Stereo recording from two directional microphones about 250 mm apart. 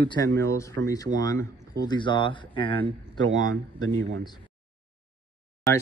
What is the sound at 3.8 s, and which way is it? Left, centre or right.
Speech, right.